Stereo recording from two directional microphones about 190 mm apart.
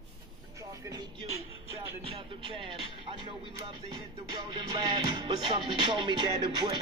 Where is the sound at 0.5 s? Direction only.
15° right (ahead or behind).